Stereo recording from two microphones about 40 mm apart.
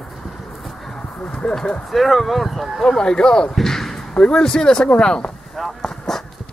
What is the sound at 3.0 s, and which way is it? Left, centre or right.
Speech, centre.